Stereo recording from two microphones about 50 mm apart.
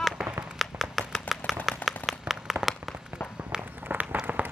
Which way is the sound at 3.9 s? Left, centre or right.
Right.